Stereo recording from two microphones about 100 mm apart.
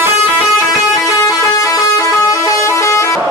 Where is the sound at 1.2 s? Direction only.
35° left (ahead or behind).